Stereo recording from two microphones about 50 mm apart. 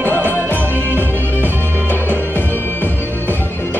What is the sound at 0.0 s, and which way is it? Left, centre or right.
Music, right.